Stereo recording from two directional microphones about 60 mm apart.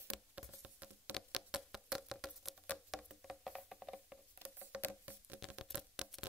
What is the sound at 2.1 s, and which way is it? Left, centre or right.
Patter, centre.